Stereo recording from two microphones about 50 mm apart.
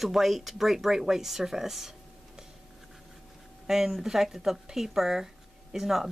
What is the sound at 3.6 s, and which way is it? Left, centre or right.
Speech, centre.